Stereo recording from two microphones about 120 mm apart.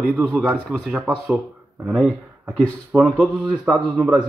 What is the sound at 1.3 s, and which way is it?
Speech, 15° right (ahead or behind).